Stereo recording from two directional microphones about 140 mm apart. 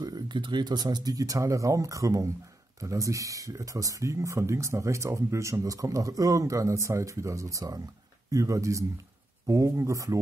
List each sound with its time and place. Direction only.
0.0 s speech: 30° right (ahead or behind)